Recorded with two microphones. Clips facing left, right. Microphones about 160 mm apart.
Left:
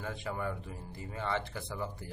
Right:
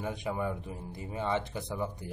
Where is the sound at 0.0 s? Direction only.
15° right (ahead or behind).